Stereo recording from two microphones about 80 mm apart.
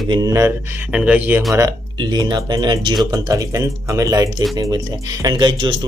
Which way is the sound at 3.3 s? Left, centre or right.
Right.